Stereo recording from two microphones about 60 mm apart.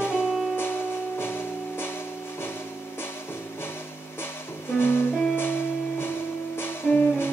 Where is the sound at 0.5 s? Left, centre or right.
Left.